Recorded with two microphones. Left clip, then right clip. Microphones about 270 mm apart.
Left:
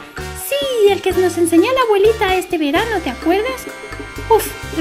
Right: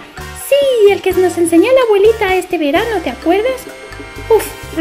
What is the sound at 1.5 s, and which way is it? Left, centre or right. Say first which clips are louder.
Speech: right 5 dB; left.